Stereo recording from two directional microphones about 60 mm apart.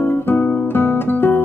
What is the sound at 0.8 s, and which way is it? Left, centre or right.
Guitar, left.